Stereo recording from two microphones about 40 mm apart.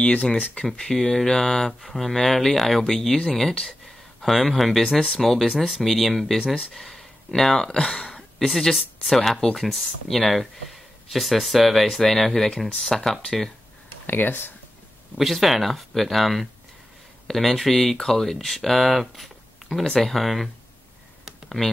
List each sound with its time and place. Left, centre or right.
0.0 s speech: left
0.7 s speech: centre
7.2 s speech: centre
8.1 s a sound: centre
9.0 s speech: centre
14.0 s speech: left
15.3 s speech: centre
19.8 s speech: centre
20.2 s speech: centre